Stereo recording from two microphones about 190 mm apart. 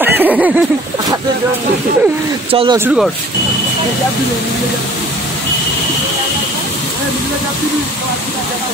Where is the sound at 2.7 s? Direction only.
10° right (ahead or behind).